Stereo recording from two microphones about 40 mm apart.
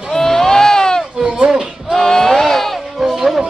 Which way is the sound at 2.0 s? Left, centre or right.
Centre.